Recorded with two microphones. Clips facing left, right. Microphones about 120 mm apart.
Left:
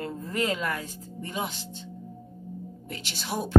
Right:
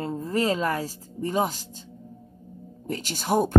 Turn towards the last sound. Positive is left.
turn(degrees=-45)  # may be behind; listen again after turning